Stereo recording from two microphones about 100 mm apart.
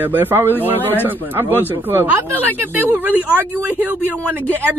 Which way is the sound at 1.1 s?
20° right (ahead or behind).